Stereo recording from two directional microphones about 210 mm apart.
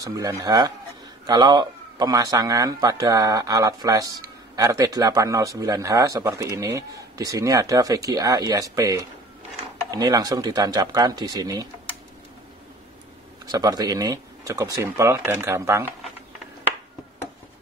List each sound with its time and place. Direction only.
0.0 s speech: 15° right (ahead or behind)
13.5 s speech: 20° right (ahead or behind)